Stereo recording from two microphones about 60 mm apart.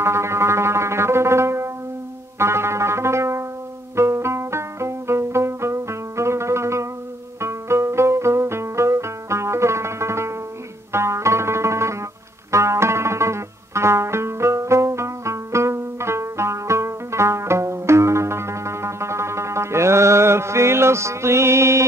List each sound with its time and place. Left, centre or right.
0.0 s music: right